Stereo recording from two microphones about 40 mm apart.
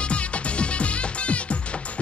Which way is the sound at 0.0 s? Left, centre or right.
Left.